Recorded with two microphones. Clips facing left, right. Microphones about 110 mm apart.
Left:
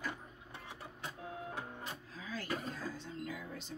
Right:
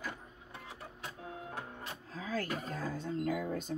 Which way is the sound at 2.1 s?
45° right (ahead or behind).